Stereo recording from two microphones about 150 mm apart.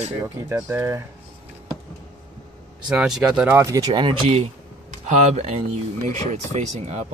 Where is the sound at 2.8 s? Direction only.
5° right (ahead or behind); by 4.3 s 35° right (ahead or behind).